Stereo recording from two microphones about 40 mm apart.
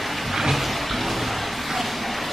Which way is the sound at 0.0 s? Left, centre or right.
Centre.